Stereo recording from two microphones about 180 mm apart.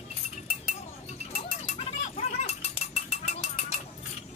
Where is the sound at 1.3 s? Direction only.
35° left (ahead or behind).